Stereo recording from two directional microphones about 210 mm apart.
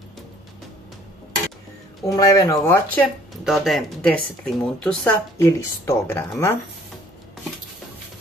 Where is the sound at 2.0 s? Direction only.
15° left (ahead or behind).